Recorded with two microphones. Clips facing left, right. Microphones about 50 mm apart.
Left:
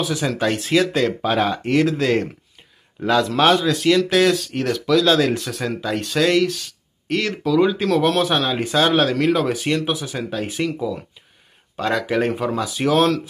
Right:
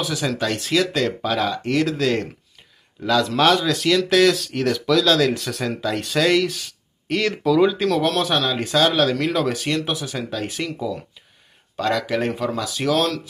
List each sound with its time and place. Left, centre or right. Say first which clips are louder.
0.0 s a man's voice: left 2 dB; centre
3.3 s speech: left 1 dB; centre
5.3 s speech: left 1 dB; centre